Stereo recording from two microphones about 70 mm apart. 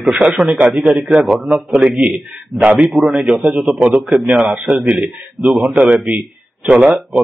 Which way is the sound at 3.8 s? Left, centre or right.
Centre.